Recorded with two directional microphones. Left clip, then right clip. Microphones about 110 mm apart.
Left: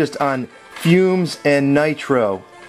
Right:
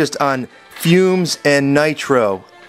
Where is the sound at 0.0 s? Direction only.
40° right (ahead or behind).